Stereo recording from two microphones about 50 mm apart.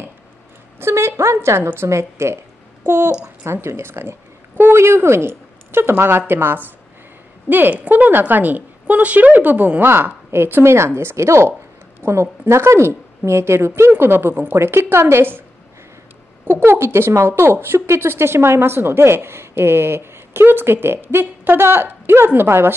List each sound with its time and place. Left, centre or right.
0.7 s a sound: right
1.9 s speech: right
4.7 s a woman's voice: right
11.1 s a woman's voice: right
14.3 s a woman's voice: right
14.6 s a woman's voice: right
16.4 s a woman's voice: right